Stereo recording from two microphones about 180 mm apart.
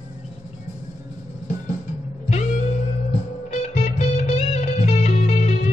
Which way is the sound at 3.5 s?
40° left (ahead or behind).